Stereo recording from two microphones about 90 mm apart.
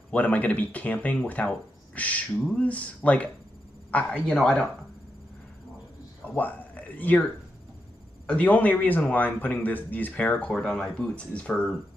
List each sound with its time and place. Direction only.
0.1 s a man's voice: 15° left (ahead or behind)
6.2 s speech: 15° left (ahead or behind)
8.3 s a man's voice: 15° left (ahead or behind)